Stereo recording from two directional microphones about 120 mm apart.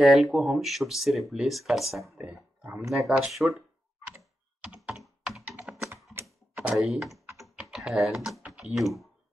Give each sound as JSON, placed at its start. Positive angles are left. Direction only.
{"t": 0.0, "sound": "speech", "side_deg": 0}
{"t": 4.1, "sound": "computer keyboard", "side_deg": -5}
{"t": 6.2, "sound": "typing", "side_deg": -5}
{"t": 7.7, "sound": "speech", "side_deg": 0}